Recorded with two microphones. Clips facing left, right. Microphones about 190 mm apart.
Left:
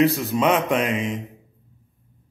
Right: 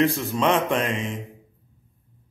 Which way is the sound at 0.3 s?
15° left (ahead or behind).